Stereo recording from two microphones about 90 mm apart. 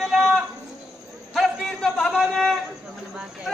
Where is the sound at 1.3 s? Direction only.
5° left (ahead or behind).